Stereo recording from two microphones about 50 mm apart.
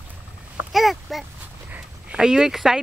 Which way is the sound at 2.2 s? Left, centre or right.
Centre.